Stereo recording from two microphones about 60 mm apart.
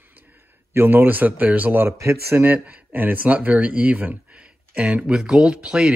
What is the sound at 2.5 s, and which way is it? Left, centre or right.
Speech, right.